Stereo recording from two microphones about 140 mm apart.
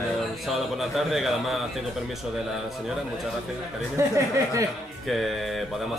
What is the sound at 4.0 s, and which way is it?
Speech, 20° right (ahead or behind).